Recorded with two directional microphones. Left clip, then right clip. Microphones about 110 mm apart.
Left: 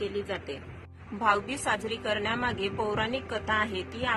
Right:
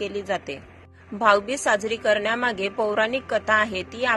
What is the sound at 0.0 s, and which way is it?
A woman's voice, 50° right (ahead or behind).